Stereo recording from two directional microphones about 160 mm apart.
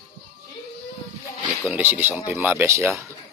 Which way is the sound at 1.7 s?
15° right (ahead or behind).